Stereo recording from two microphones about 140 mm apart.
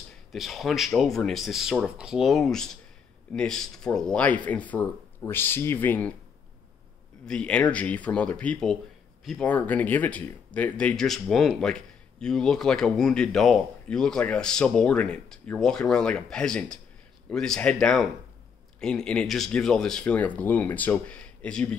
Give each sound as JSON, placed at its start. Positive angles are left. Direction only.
{"t": 0.3, "sound": "speech", "side_deg": 0}
{"t": 7.2, "sound": "speech", "side_deg": 5}